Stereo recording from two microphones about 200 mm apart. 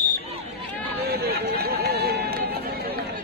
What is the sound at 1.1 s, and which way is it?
Run, 50° right (ahead or behind).